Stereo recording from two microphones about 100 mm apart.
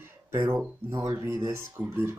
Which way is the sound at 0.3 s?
30° right (ahead or behind).